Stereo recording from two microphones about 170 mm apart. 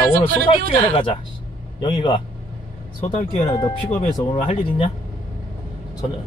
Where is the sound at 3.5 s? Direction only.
30° left (ahead or behind).